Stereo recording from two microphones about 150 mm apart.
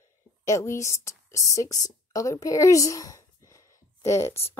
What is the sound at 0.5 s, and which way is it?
A woman's voice, 20° left (ahead or behind).